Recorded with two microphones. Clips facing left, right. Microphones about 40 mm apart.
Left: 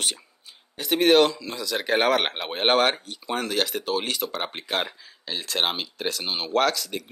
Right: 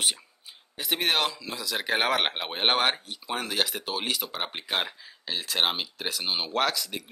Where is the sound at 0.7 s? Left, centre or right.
Centre.